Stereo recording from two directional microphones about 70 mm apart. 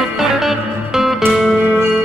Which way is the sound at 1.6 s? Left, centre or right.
Right.